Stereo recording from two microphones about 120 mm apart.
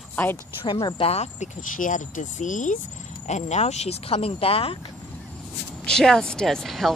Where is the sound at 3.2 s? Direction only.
70° left (ahead or behind); by 4.7 s 55° left (ahead or behind).